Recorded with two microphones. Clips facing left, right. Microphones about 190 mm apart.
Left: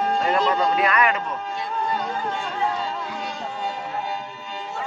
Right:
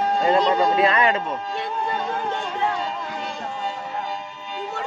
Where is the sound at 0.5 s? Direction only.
25° right (ahead or behind).